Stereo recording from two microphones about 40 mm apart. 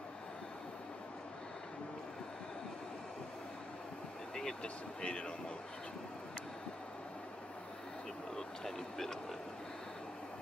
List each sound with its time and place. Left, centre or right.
5.0 s a man's voice: left
8.4 s speech: centre